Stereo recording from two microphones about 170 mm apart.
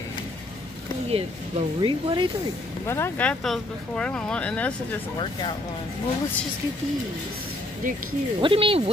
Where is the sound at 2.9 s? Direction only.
10° left (ahead or behind).